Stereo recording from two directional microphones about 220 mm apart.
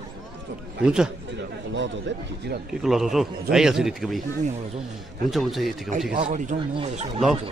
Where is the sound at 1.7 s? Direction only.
55° right (ahead or behind).